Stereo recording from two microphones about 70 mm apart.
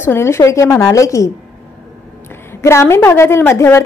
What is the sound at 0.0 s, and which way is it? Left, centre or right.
A woman's voice, left.